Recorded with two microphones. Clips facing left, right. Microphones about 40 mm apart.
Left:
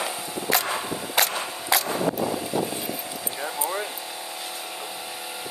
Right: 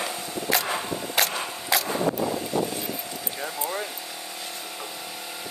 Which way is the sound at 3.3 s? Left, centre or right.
Centre.